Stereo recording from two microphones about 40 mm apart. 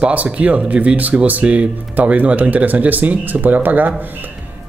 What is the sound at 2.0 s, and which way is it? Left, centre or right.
Speech, right.